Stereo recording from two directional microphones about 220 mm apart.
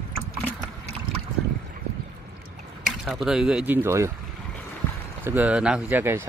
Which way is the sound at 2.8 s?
Centre (ahead or behind).